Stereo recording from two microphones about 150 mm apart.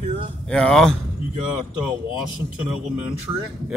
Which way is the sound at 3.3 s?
15° right (ahead or behind).